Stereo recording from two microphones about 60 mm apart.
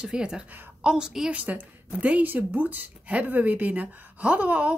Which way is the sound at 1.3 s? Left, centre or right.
Right.